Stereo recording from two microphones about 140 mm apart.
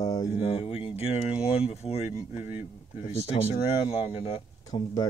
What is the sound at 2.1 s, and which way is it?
Speech, 10° right (ahead or behind).